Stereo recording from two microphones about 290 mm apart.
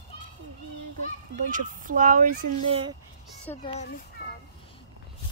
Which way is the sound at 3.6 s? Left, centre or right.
Left.